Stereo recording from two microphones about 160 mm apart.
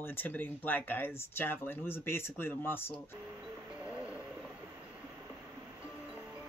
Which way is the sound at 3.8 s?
10° right (ahead or behind).